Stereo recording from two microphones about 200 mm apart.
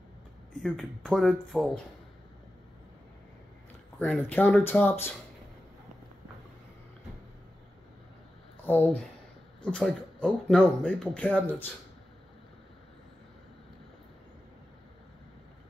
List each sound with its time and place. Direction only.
0.6 s speech: centre (ahead or behind)
4.0 s speech: 5° left (ahead or behind)
8.6 s speech: 10° left (ahead or behind)